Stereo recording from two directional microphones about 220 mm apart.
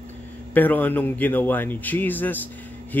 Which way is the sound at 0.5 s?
10° left (ahead or behind).